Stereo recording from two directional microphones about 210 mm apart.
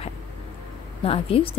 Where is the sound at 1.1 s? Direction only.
25° left (ahead or behind).